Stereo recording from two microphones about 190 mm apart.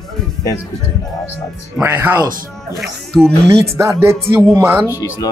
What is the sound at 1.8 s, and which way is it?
Speech, 10° right (ahead or behind).